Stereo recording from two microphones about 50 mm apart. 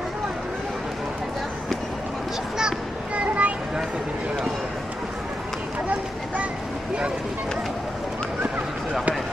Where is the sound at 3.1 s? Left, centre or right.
Right.